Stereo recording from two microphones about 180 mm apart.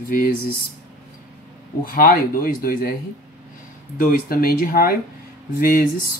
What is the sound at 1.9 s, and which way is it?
Speech, 55° left (ahead or behind).